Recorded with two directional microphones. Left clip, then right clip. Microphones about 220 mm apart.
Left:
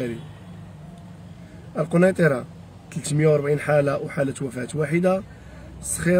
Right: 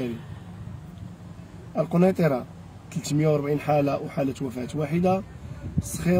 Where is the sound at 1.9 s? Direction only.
35° left (ahead or behind).